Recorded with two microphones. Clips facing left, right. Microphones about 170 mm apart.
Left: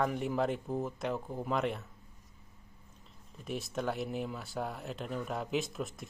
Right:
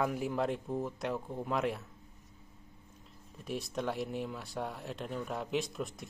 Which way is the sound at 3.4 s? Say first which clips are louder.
Even; centre (ahead or behind).